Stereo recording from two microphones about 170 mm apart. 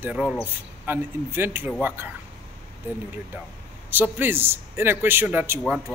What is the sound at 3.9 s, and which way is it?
Speech, 10° right (ahead or behind).